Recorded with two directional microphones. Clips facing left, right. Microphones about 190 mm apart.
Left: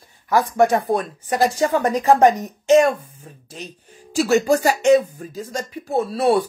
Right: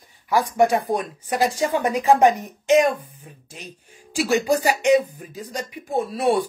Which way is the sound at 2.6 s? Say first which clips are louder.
Left 3 dB; 15° right (ahead or behind).